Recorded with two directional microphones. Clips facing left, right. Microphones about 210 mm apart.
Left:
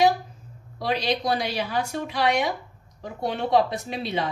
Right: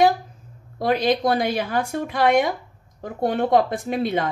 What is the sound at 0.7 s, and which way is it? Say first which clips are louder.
A woman's voice: right 6 dB; 50° right (ahead or behind).